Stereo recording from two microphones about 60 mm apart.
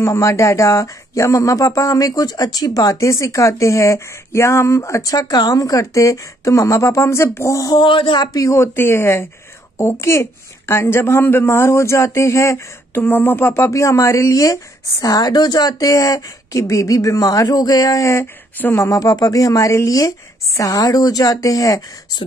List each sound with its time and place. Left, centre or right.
0.0 s speech: left
8.3 s speech: left
8.5 s a man's voice: left
12.9 s speech: left
13.7 s speech: left
15.0 s speech: left
18.8 s speech: left